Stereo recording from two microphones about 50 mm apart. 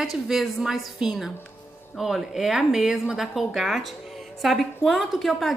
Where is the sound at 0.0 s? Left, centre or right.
Centre.